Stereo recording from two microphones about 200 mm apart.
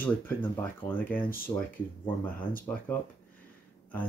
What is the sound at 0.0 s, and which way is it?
Speech, 10° left (ahead or behind).